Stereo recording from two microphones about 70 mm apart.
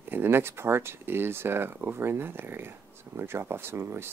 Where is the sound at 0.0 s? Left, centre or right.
Right.